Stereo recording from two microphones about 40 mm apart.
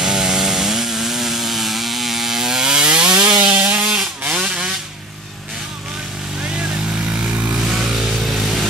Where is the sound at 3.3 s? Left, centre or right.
Right.